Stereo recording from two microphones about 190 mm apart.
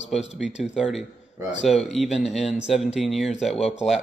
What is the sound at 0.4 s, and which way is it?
Speech, 5° right (ahead or behind).